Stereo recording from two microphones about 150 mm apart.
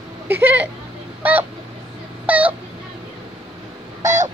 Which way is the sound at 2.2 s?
10° right (ahead or behind).